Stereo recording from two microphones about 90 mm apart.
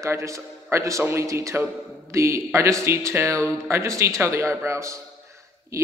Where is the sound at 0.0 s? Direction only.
35° right (ahead or behind).